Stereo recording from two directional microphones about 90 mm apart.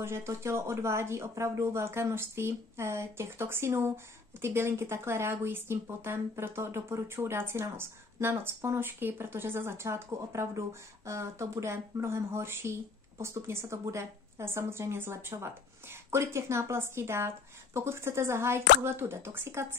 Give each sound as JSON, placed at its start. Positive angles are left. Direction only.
{"t": 0.0, "sound": "speech", "side_deg": -30}